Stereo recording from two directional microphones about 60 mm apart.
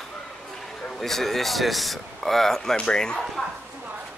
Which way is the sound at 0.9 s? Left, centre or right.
Centre.